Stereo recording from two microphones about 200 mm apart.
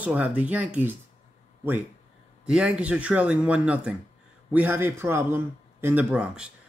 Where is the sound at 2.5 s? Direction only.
5° right (ahead or behind).